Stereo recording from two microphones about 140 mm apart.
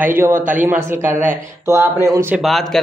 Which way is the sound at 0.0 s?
15° right (ahead or behind).